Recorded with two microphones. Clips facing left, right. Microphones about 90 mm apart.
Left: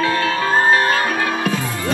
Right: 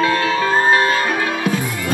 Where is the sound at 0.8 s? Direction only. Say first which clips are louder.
Even; 20° left (ahead or behind).